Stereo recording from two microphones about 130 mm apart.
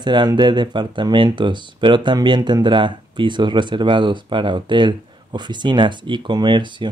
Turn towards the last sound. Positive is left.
turn(degrees=-35)  # may be behind; listen again after turning